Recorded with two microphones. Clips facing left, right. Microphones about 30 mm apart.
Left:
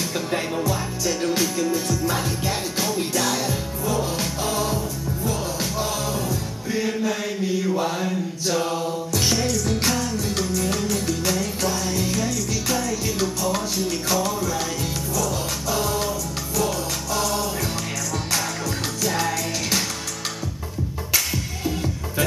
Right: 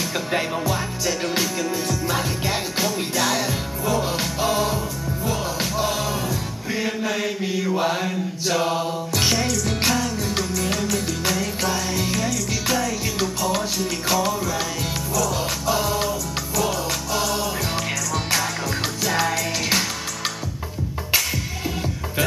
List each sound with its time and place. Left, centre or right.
0.3 s music: right
11.2 s music: centre
15.7 s music: centre
19.0 s music: centre